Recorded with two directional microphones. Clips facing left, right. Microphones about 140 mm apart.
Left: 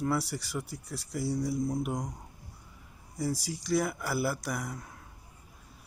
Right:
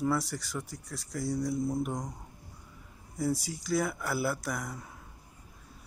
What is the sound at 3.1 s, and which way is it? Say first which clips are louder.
Speech: right 2 dB; centre (ahead or behind).